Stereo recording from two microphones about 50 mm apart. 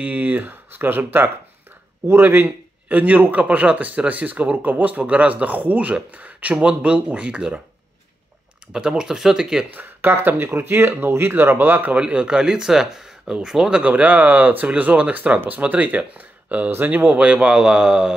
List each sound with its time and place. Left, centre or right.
0.0 s a man's voice: right
8.7 s speech: centre
9.7 s speech: right
11.9 s speech: right
13.8 s a man's voice: right
17.6 s speech: centre